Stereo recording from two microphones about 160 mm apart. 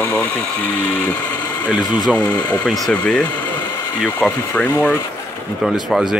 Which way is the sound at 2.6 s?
5° left (ahead or behind).